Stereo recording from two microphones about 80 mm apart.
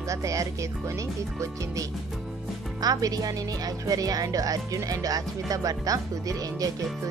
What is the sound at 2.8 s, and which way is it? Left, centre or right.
Speech, right.